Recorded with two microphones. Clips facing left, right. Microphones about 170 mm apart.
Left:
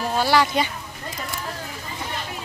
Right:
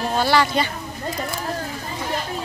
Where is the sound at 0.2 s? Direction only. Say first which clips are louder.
Even; 10° left (ahead or behind).